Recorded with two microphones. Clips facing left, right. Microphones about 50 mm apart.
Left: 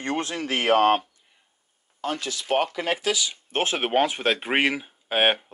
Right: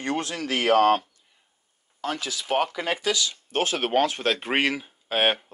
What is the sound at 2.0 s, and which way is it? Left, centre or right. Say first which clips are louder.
Speech: left 1 dB; centre.